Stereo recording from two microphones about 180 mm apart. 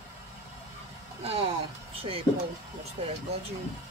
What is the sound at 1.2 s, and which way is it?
Speech, 35° right (ahead or behind).